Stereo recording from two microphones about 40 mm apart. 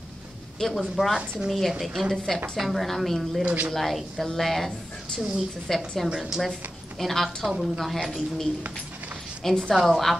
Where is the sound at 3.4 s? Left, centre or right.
Right.